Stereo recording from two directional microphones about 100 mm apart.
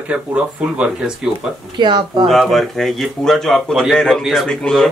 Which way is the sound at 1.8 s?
50° right (ahead or behind).